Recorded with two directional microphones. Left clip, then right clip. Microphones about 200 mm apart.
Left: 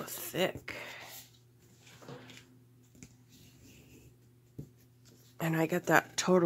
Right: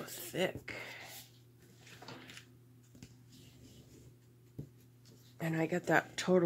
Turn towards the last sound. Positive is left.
turn(degrees=20)  # may be behind; listen again after turning